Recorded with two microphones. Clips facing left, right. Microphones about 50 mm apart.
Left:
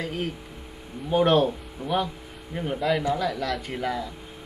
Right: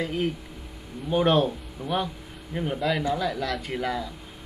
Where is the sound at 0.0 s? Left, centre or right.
Right.